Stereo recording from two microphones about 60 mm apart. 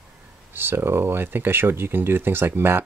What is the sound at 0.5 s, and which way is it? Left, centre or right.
Speech, right.